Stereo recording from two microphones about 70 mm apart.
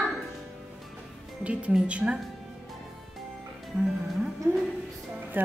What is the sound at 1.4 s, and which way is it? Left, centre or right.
Speech, centre.